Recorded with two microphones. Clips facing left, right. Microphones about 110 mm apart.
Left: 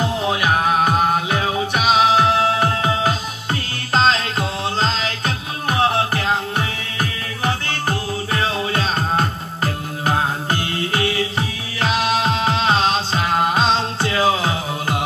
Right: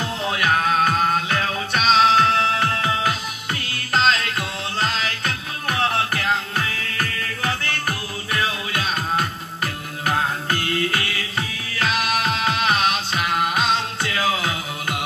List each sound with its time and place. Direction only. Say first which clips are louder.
0.0 s music: left 4 dB; 20° left (ahead or behind)